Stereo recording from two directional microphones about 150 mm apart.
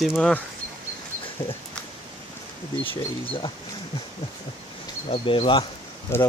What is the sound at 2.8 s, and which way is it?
Speech, 35° left (ahead or behind).